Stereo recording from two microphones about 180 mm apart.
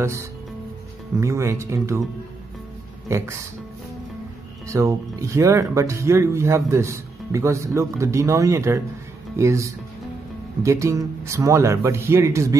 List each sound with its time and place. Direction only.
0.0 s speech: 15° right (ahead or behind)
3.1 s speech: 15° right (ahead or behind)
4.6 s speech: 15° right (ahead or behind)